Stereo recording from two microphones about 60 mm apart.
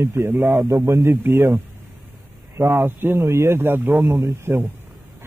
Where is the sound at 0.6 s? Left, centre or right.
Right.